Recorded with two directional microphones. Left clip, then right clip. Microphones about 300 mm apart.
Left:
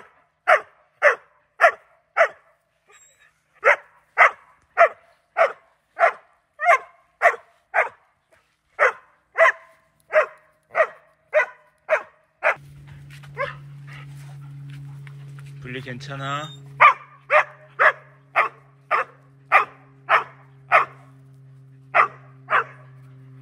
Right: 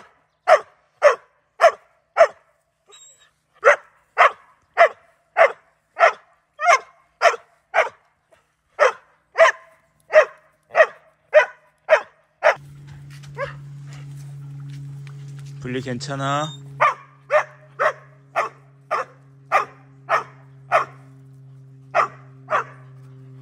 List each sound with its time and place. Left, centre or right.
0.5 s dog: centre
3.5 s dog: centre
6.5 s dog: right
13.1 s dog: centre
15.6 s dog: centre
21.9 s dog: centre